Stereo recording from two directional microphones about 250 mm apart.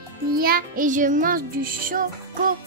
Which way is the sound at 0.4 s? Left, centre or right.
Right.